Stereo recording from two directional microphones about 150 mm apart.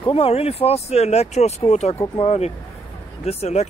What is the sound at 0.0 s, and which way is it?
Speech, 40° left (ahead or behind).